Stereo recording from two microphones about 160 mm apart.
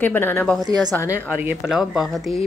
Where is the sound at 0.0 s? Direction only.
15° left (ahead or behind).